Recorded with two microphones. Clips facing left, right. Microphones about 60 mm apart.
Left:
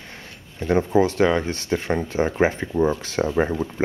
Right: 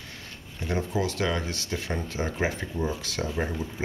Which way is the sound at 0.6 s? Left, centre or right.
Left.